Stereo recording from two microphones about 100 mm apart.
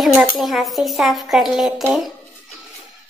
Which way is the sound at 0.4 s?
Centre (ahead or behind).